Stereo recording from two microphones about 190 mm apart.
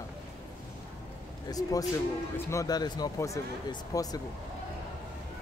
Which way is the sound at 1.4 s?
20° left (ahead or behind).